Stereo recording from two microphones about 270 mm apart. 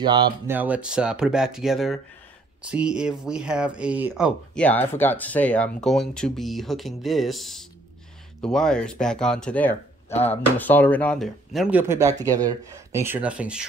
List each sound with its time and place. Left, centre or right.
0.0 s speech: centre
0.6 s speech: centre